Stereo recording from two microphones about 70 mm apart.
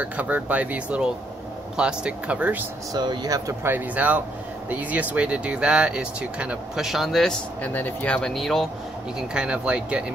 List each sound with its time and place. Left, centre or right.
0.0 s speech: right
2.9 s speech: right
3.6 s speech: right
6.8 s speech: centre
7.6 s speech: left
8.2 s speech: centre
9.3 s speech: centre